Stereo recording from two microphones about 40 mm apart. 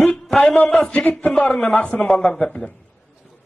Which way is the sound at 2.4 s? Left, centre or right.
Left.